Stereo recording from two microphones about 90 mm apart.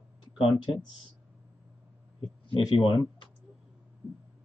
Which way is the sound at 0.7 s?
50° left (ahead or behind).